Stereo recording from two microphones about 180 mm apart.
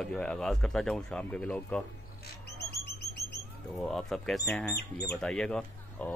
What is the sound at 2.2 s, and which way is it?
Bird, 65° left (ahead or behind).